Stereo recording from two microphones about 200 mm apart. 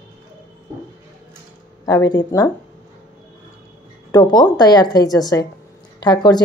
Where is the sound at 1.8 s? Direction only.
15° left (ahead or behind).